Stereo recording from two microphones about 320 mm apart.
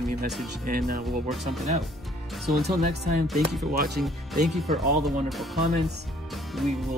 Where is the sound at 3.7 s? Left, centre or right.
Right.